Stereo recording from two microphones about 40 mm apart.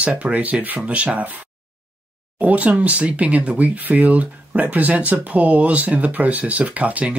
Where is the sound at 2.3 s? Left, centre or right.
Right.